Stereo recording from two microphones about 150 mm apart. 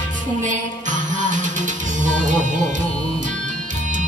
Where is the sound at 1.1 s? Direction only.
55° right (ahead or behind).